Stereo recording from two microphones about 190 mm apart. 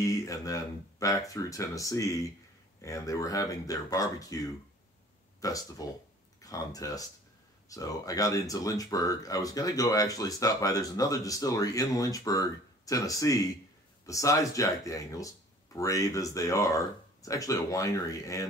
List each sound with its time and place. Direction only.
0.0 s speech: 15° left (ahead or behind)